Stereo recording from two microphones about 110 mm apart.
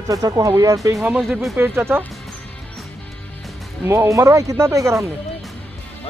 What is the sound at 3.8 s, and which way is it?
Speech, 25° right (ahead or behind).